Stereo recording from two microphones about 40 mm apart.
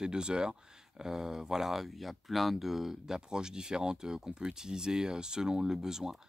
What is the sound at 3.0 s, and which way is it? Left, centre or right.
Speech, centre.